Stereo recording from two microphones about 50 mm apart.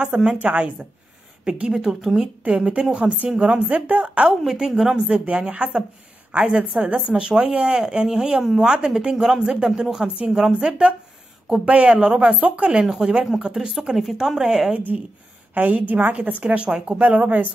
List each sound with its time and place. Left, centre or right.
0.0 s a woman's voice: centre
2.4 s speech: right
4.5 s speech: centre
10.4 s speech: centre
12.8 s a woman's voice: centre
15.5 s a woman's voice: right
16.6 s speech: centre